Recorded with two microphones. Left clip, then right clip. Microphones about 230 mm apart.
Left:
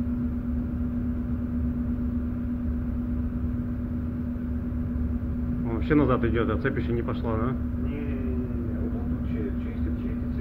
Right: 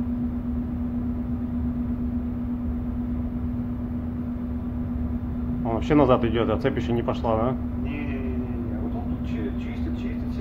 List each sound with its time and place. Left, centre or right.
5.9 s speech: centre